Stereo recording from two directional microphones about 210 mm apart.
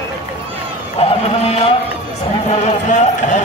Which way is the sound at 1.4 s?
30° left (ahead or behind).